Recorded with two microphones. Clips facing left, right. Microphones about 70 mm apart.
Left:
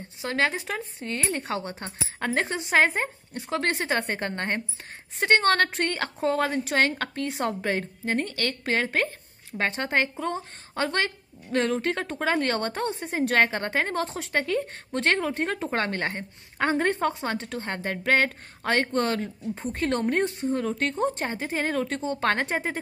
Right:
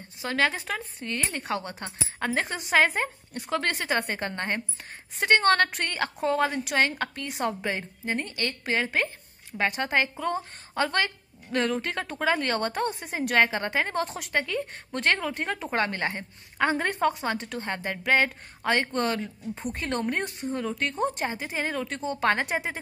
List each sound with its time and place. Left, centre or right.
0.3 s speech: left
1.1 s a woman's voice: left